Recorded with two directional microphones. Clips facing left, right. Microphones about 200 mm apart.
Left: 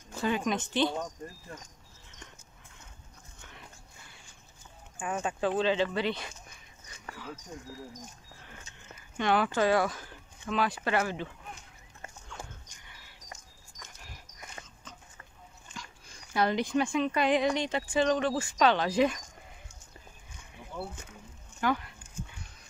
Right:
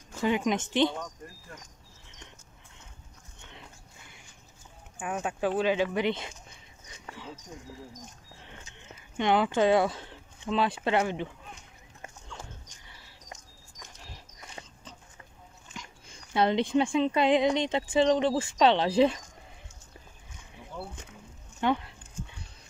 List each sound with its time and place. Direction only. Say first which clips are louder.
0.2 s speech: right 3 dB; 20° right (ahead or behind)
4.9 s speech: even; 5° right (ahead or behind); by 7.3 s 25° right (ahead or behind)
8.4 s speech: right 4 dB; 20° right (ahead or behind)
14.1 s dog: right 1 dB; 30° right (ahead or behind)
16.3 s speech: right 3 dB; 25° right (ahead or behind)
20.7 s speech: left 1 dB; centre (ahead or behind)
21.5 s a sound: right 2 dB; 25° right (ahead or behind)